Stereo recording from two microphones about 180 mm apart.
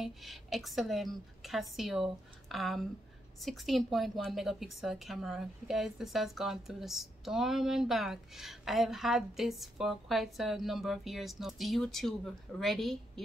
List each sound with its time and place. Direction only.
0.0 s a woman's voice: centre (ahead or behind)